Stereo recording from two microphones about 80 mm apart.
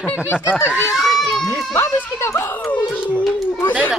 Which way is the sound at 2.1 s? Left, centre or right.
Left.